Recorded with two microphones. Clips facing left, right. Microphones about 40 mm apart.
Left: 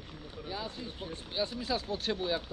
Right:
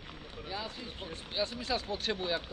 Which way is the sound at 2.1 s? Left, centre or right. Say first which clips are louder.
Left 2 dB; right.